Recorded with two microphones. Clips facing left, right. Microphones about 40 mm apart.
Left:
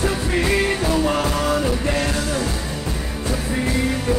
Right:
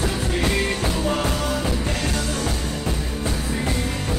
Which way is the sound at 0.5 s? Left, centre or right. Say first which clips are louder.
Left 6 dB; left.